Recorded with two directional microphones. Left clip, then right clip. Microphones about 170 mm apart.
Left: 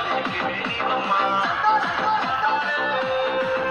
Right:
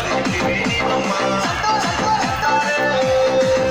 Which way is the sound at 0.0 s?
30° left (ahead or behind).